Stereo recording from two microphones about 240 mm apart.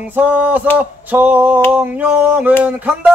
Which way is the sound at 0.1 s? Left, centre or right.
Centre.